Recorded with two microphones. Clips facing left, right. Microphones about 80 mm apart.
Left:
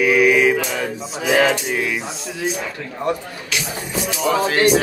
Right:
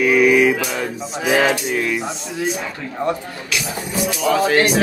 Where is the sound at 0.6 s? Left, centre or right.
Centre.